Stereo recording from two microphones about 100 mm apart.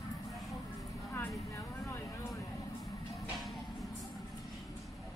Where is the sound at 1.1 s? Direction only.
25° left (ahead or behind).